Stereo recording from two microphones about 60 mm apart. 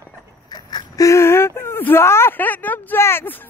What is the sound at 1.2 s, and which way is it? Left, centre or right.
Whimper, left.